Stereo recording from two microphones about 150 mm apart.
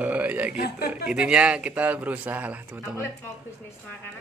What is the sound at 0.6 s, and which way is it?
Speech, 90° left.